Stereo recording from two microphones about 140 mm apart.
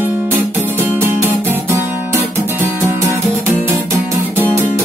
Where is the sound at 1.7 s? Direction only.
20° right (ahead or behind).